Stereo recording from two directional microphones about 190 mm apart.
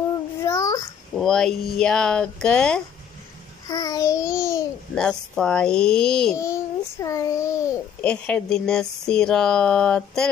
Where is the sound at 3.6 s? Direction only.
20° left (ahead or behind).